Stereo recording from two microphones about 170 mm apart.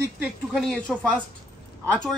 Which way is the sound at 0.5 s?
Centre (ahead or behind).